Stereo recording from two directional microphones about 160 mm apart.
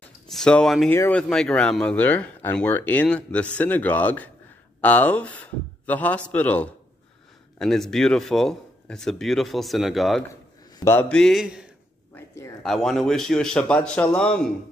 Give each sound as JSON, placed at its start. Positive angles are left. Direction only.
{"t": 0.3, "sound": "speech", "side_deg": 5}
{"t": 0.8, "sound": "speech", "side_deg": 15}
{"t": 10.8, "sound": "mantra", "side_deg": 15}
{"t": 11.1, "sound": "speech", "side_deg": 5}
{"t": 12.1, "sound": "a sound", "side_deg": 15}
{"t": 12.6, "sound": "speech", "side_deg": 0}